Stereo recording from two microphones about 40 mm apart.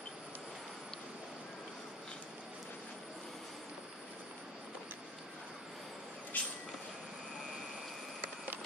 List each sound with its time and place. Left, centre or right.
6.3 s vehicle: left